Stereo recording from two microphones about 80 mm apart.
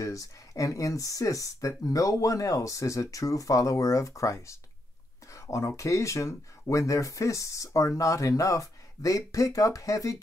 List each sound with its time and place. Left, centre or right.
0.0 s speech: left